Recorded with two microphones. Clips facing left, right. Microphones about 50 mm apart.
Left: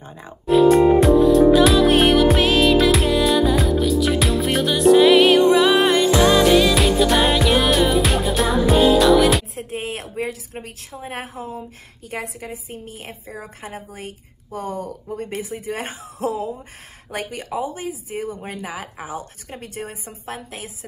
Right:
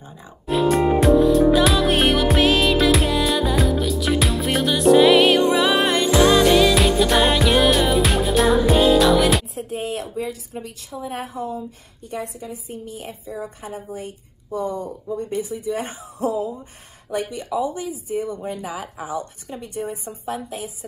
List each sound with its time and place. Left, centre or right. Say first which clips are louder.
0.5 s music: left 5 dB; centre
9.6 s a sound: right 2 dB; left
10.1 s a woman's voice: even; left
12.1 s a woman's voice: even; left
17.1 s speech: right 3 dB; left
18.4 s speech: right 2 dB; left
19.5 s speech: right 3 dB; left
20.2 s a woman's voice: right 4 dB; left